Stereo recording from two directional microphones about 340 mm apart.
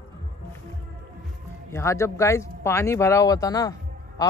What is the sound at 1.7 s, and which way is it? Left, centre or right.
A man's voice, centre.